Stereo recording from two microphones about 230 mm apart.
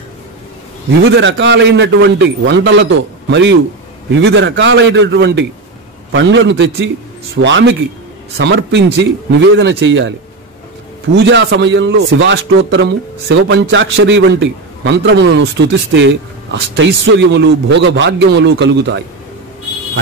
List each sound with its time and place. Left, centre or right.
1.0 s a man's voice: right
11.1 s a man's voice: right